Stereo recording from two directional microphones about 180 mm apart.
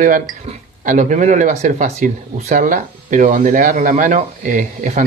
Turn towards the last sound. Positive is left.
turn(degrees=-45)  # may be behind; listen again after turning